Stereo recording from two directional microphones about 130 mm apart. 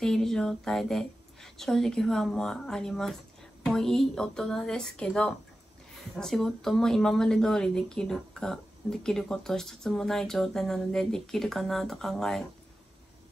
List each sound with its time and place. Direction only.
0.0 s speech: 5° left (ahead or behind)